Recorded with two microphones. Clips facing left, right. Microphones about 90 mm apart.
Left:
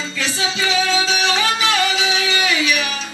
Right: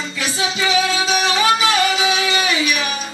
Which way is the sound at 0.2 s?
20° right (ahead or behind).